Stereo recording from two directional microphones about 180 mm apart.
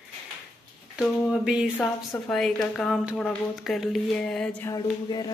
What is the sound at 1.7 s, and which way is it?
A woman's voice, 10° left (ahead or behind).